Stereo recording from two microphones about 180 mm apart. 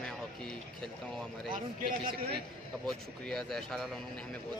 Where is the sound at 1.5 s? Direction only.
25° right (ahead or behind).